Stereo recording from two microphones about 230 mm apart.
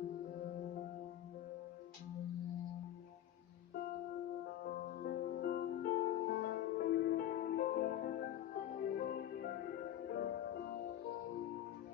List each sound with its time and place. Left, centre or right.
4.9 s music: left